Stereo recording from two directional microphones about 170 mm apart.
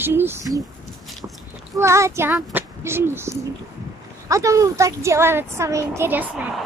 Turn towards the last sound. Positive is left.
turn(degrees=-10)  # may be behind; listen again after turning